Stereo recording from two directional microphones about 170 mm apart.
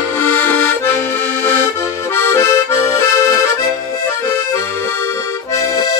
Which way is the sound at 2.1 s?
15° left (ahead or behind).